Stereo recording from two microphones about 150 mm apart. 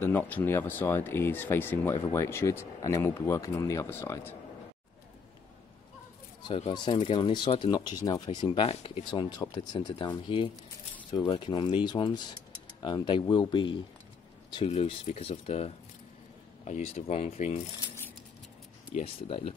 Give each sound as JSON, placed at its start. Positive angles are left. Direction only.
{"t": 0.0, "sound": "speech", "side_deg": 15}
{"t": 6.4, "sound": "speech", "side_deg": 35}
{"t": 14.7, "sound": "speech", "side_deg": 45}
{"t": 18.9, "sound": "speech", "side_deg": 40}